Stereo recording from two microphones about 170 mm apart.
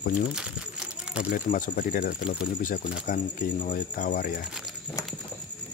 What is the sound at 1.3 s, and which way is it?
Speech, 55° left (ahead or behind).